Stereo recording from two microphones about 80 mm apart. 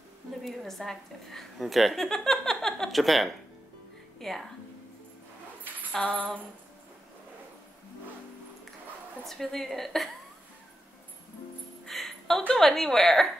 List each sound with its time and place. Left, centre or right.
0.5 s a woman's voice: centre
5.6 s a sound: right
9.2 s a woman's voice: centre
11.8 s a woman's voice: centre